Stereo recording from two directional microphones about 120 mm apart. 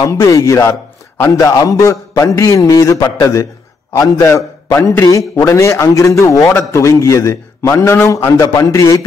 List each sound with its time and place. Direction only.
0.0 s a man's voice: 25° left (ahead or behind)